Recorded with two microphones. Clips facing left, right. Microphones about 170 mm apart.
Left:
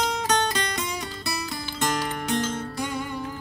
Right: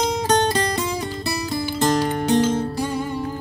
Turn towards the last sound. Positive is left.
turn(degrees=-35)  # may be behind; listen again after turning